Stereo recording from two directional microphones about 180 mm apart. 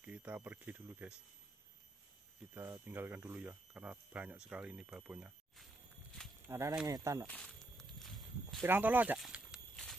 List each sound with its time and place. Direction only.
0.0 s speech: 10° right (ahead or behind)
2.5 s speech: 15° right (ahead or behind)
6.4 s speech: 15° right (ahead or behind)
7.2 s walk: 5° left (ahead or behind)
8.6 s a sound: 10° right (ahead or behind)